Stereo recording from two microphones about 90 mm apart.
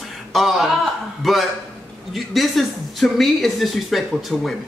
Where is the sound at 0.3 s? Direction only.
Centre (ahead or behind).